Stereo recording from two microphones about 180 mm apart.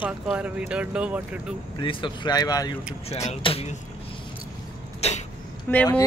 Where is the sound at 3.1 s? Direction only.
35° left (ahead or behind).